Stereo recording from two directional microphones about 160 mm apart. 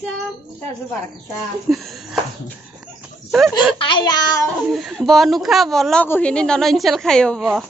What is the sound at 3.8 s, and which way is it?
Speech, 30° left (ahead or behind).